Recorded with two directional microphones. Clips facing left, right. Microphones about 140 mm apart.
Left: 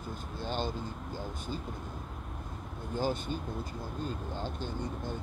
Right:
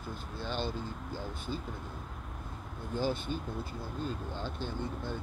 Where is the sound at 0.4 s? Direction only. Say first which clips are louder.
Left 1 dB; 45° left (ahead or behind).